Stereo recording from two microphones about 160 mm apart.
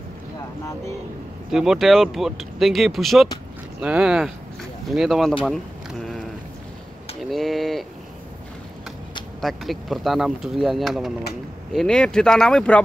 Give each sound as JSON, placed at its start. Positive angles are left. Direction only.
{"t": 1.5, "sound": "speech", "side_deg": -5}
{"t": 5.4, "sound": "a sound", "side_deg": 0}
{"t": 9.4, "sound": "speech", "side_deg": 0}